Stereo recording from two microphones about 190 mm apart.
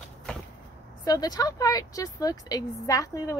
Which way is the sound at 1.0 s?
20° left (ahead or behind).